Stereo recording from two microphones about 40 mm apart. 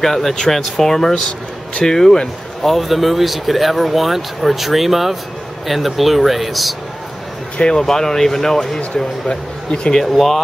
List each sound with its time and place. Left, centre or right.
0.0 s speech: centre
2.6 s speech: centre
7.5 s speech: left
7.8 s speech: centre
9.3 s speech: left
10.1 s speech: centre